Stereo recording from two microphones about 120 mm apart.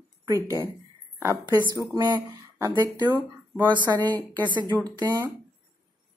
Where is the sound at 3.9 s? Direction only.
30° right (ahead or behind).